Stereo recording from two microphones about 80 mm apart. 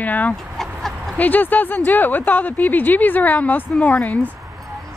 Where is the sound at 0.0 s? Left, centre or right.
Left.